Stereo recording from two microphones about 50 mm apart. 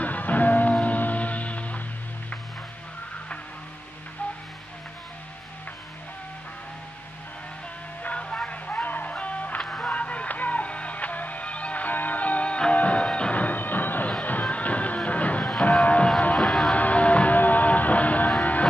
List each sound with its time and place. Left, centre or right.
0.0 s music: left
8.0 s music: left
9.6 s music: centre
9.8 s music: left
15.6 s vehicle: left
16.3 s music: centre
16.7 s music: left